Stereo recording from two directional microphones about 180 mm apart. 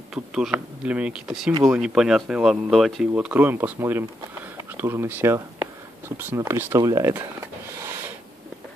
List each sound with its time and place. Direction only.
0.1 s speech: 5° right (ahead or behind)